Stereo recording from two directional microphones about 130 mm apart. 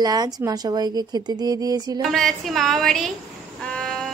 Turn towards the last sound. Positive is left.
turn(degrees=0)  # may be behind; listen again after turning